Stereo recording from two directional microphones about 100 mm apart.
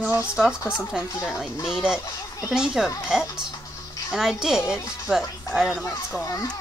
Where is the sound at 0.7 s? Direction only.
5° right (ahead or behind).